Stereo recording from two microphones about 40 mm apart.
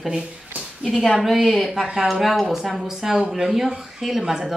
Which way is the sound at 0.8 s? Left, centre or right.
Centre.